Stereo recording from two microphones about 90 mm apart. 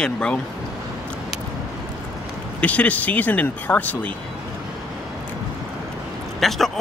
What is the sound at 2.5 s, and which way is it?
Speech, 15° left (ahead or behind).